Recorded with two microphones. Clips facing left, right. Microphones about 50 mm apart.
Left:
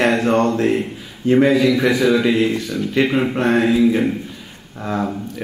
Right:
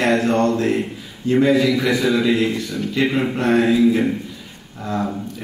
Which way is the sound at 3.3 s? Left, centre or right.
Centre.